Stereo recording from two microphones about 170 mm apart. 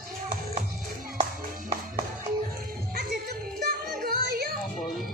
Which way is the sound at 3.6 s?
60° right (ahead or behind).